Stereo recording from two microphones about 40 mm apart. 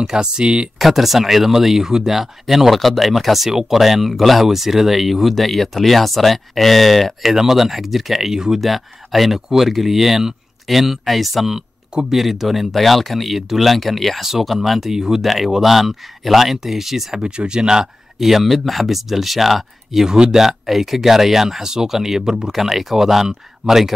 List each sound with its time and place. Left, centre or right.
0.0 s speech: centre
0.7 s speech: centre
17.2 s speech: right; by 20.1 s centre
20.1 s speech: centre